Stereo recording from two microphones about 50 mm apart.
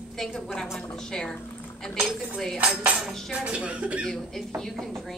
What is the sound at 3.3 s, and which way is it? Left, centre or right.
Speech, right.